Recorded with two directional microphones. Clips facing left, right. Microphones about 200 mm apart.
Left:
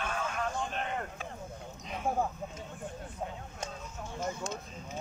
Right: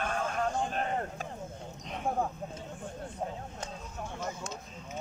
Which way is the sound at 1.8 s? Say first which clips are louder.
Even; centre (ahead or behind).